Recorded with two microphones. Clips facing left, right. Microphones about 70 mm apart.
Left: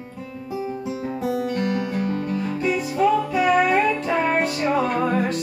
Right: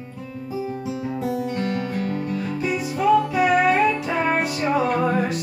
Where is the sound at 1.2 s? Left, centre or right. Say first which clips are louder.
Left 2 dB; left.